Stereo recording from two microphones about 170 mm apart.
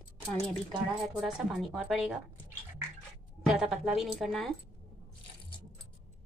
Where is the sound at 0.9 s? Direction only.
Centre (ahead or behind).